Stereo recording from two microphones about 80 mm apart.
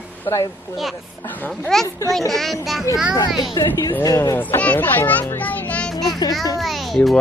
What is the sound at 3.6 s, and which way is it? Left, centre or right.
Speech, left.